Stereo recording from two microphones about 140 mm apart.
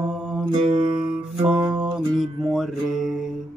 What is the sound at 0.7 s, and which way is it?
Music, 40° right (ahead or behind).